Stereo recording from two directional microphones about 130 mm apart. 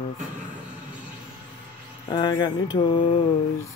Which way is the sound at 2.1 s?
35° left (ahead or behind).